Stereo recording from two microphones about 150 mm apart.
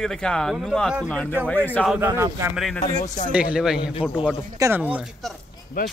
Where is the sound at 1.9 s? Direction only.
15° right (ahead or behind).